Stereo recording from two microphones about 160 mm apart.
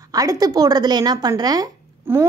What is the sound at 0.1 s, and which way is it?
A woman's voice, 20° right (ahead or behind).